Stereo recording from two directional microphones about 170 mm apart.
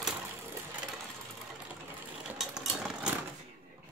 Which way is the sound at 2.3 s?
5° right (ahead or behind).